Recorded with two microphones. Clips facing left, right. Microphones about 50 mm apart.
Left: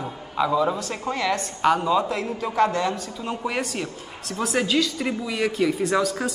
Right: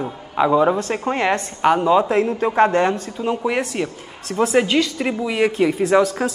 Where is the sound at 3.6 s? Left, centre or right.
Right.